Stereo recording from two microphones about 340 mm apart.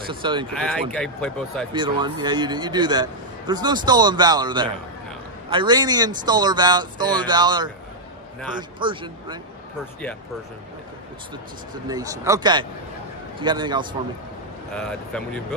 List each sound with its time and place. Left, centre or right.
0.1 s a man's voice: centre
0.6 s speech: centre
1.7 s a man's voice: centre
11.7 s a man's voice: centre
14.8 s speech: centre